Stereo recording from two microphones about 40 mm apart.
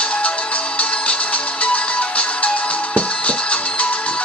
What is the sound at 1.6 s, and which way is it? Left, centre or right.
Music, left.